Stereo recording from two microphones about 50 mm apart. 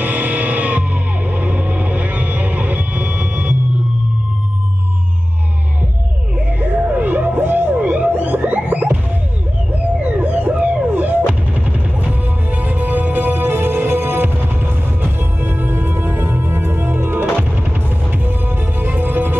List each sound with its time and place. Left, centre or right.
0.0 s music: right
6.6 s a sound: right
7.0 s music: right
7.7 s a sound: right
10.0 s emergency vehicle: right
12.0 s music: right